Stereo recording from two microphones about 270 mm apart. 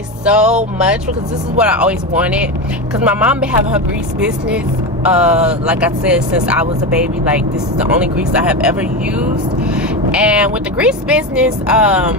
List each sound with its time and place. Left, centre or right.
0.2 s speech: centre